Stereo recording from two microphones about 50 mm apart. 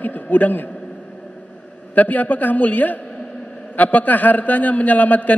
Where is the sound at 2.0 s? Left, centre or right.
Left.